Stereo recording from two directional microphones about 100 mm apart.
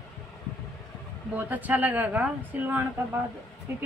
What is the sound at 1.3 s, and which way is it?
A woman's voice, 15° right (ahead or behind).